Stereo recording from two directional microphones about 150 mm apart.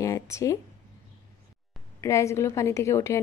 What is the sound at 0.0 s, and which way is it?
Speech, 20° left (ahead or behind).